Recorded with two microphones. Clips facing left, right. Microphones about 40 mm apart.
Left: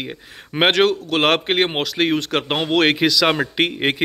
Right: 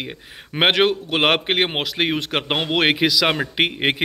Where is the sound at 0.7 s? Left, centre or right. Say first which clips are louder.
Left 1 dB; centre.